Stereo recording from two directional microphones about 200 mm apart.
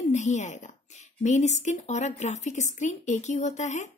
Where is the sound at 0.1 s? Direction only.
35° left (ahead or behind).